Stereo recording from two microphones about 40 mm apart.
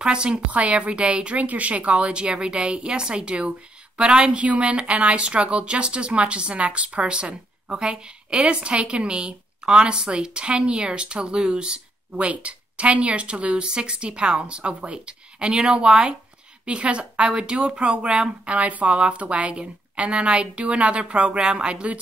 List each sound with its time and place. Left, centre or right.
0.0 s speech: right
0.5 s speech: right